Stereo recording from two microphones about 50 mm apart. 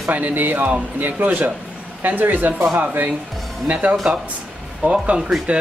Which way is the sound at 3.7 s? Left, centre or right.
Right.